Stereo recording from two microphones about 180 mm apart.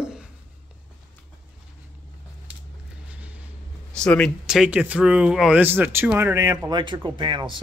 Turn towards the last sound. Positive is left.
turn(degrees=-25)  # may be behind; listen again after turning